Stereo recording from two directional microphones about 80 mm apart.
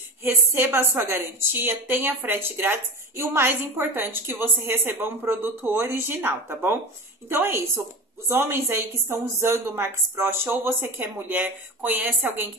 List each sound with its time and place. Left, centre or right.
0.2 s a woman's voice: right